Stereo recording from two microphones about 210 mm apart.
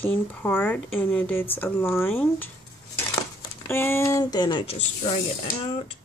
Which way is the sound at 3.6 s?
10° left (ahead or behind).